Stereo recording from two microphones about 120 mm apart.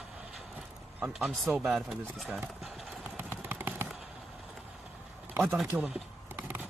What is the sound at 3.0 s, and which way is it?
Vehicle, 15° right (ahead or behind).